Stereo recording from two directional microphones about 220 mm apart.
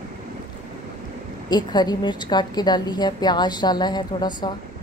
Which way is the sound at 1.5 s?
20° left (ahead or behind).